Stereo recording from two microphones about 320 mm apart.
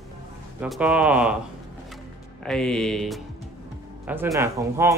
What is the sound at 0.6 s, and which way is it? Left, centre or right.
Speech, centre.